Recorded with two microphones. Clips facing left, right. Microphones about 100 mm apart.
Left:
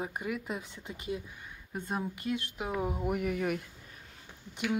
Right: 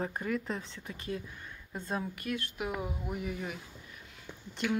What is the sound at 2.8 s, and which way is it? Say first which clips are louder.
Speech: left 5 dB; 45° left (ahead or behind).